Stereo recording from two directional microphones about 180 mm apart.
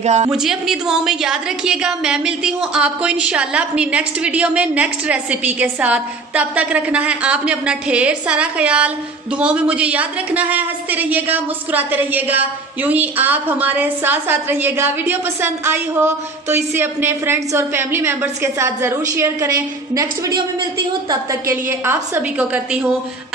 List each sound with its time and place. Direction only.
0.0 s a woman's voice: 40° right (ahead or behind)
0.3 s a woman's voice: 5° right (ahead or behind)